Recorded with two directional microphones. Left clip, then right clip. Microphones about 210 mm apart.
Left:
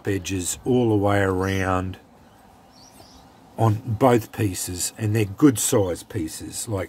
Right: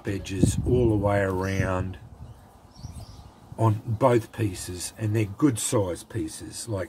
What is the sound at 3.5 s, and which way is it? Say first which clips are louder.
Speech: left 3 dB; 45° left (ahead or behind).